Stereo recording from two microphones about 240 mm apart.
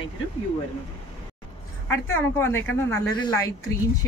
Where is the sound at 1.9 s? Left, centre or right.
Centre.